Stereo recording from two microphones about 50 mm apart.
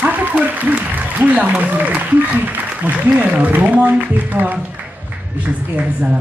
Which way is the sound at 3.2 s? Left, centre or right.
Right.